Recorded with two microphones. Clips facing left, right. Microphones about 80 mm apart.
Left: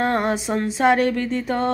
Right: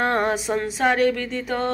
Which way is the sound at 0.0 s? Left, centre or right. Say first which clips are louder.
Even; centre.